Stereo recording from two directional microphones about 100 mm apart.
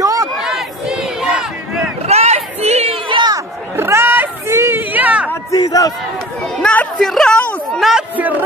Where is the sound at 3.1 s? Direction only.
50° right (ahead or behind).